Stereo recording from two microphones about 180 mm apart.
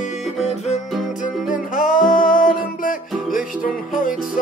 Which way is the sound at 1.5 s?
50° left (ahead or behind).